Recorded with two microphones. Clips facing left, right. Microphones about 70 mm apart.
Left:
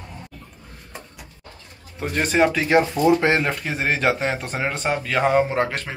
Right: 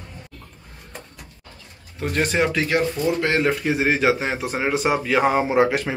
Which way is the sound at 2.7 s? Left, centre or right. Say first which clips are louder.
Left 4 dB; centre.